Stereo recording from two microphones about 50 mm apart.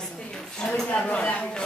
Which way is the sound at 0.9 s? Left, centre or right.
Left.